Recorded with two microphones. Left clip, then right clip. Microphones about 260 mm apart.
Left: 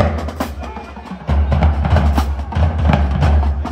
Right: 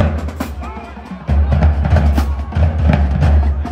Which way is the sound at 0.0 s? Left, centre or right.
Left.